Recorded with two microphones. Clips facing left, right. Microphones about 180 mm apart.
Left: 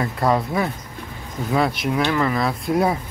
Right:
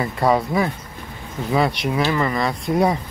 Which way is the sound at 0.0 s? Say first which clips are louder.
Right 1 dB; centre (ahead or behind).